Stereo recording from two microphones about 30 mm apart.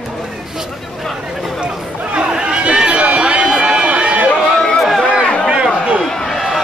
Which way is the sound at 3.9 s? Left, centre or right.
Right.